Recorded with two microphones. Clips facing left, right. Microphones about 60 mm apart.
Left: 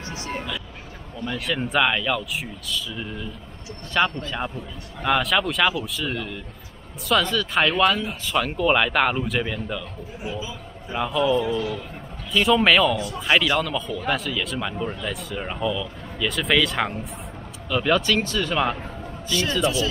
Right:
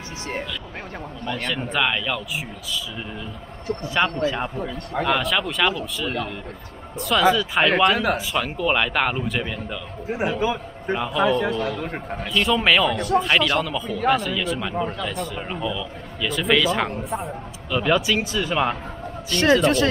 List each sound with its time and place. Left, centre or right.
1.2 s speech: centre
5.0 s speech: centre
7.3 s speech: centre
7.9 s a man's voice: right
8.3 s speech: centre
10.0 s a man's voice: right
11.0 s speech: centre
11.4 s a man's voice: right
12.4 s speech: centre
12.9 s a man's voice: right
13.2 s speech: centre
19.2 s a man's voice: right